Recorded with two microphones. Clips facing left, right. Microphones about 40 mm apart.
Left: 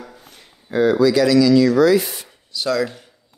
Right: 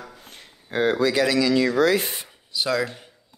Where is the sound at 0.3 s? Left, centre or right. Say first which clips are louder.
Left 5 dB; right.